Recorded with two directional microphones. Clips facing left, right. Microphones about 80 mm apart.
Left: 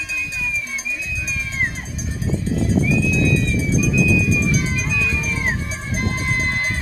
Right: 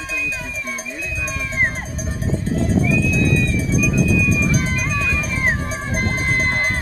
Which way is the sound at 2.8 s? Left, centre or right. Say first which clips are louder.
Even; right.